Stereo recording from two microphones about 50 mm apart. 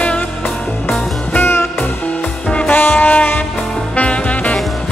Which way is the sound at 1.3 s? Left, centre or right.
Left.